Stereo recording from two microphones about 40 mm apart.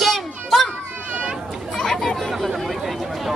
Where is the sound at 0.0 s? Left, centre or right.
Centre.